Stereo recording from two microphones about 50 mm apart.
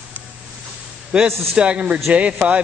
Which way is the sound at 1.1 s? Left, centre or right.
Right.